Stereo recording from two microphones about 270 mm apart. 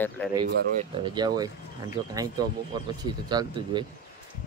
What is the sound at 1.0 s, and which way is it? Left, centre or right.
Speech, centre.